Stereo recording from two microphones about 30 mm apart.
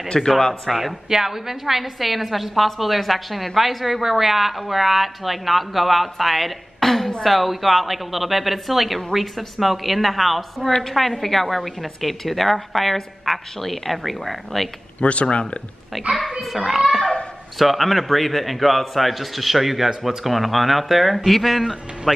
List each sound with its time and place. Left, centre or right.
0.1 s speech: centre
0.7 s speech: centre
1.1 s speech: centre
7.2 s speech: centre
10.7 s a woman's voice: centre
11.0 s speech: centre
15.0 s speech: left
17.6 s speech: centre